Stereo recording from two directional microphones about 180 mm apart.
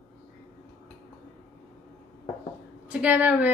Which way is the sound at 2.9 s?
10° right (ahead or behind).